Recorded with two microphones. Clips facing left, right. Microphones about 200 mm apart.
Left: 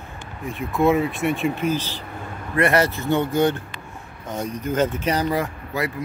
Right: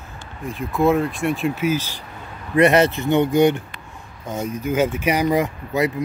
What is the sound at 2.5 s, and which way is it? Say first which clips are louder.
Speech: right 4 dB; 20° right (ahead or behind).